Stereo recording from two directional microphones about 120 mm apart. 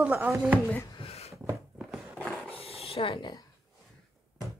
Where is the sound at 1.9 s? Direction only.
Centre (ahead or behind).